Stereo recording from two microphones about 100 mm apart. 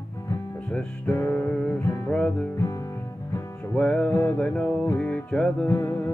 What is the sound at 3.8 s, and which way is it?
Music, 10° left (ahead or behind).